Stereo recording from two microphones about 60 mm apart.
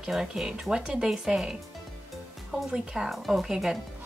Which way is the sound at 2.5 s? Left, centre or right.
Centre.